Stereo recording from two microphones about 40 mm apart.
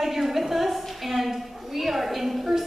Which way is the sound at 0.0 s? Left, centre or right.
Centre.